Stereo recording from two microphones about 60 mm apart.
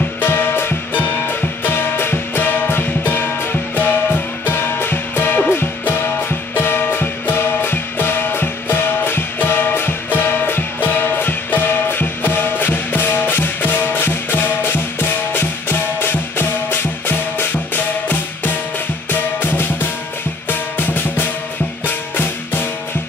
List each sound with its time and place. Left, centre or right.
0.2 s music: left
20.4 s drum: left
21.8 s music: left